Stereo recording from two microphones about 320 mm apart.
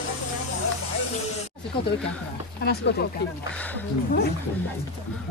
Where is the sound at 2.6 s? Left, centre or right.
Left.